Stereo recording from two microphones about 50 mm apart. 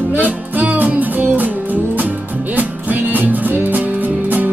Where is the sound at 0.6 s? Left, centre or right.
Right.